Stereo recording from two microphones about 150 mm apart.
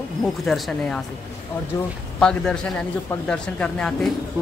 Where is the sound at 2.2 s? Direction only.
5° left (ahead or behind).